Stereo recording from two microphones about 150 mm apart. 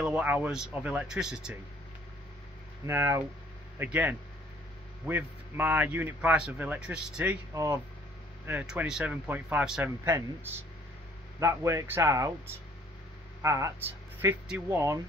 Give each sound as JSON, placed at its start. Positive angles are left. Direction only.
{"t": 0.0, "sound": "speech", "side_deg": -10}
{"t": 2.9, "sound": "speech", "side_deg": -15}
{"t": 7.5, "sound": "speech", "side_deg": -20}
{"t": 8.5, "sound": "speech", "side_deg": -10}
{"t": 13.4, "sound": "speech", "side_deg": -20}